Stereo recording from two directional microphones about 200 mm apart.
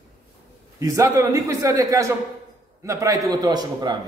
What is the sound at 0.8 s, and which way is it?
A man's voice, 15° right (ahead or behind).